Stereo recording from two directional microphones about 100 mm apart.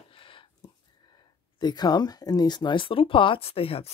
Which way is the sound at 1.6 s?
45° left (ahead or behind).